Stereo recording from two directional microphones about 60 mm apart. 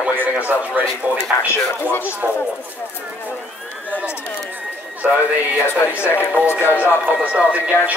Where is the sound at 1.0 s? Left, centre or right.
Right.